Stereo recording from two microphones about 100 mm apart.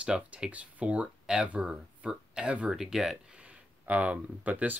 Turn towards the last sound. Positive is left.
turn(degrees=-15)  # may be behind; listen again after turning